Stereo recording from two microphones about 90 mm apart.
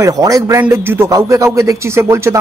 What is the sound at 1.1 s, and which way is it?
Speech, 40° right (ahead or behind).